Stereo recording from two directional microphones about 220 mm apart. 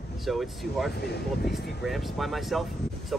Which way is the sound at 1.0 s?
50° left (ahead or behind).